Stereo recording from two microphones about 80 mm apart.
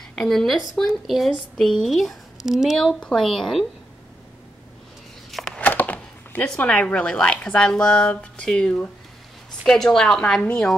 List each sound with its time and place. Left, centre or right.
0.1 s a woman's voice: centre
2.8 s speech: centre
5.6 s a sound: left
6.6 s speech: centre